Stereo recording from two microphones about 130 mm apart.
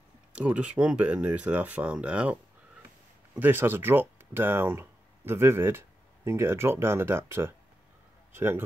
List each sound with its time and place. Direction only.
0.3 s speech: 10° right (ahead or behind)
3.3 s speech: 15° right (ahead or behind)